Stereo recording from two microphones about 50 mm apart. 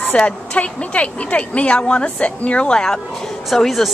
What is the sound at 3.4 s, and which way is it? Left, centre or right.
Speech, centre.